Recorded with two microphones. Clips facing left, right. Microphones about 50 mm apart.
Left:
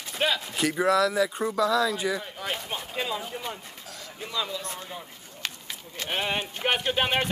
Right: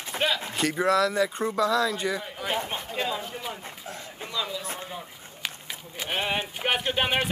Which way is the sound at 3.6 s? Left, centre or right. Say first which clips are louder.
Right 4 dB; right.